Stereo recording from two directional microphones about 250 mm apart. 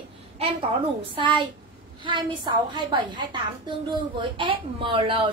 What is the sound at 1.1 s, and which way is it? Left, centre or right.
A woman's voice, centre.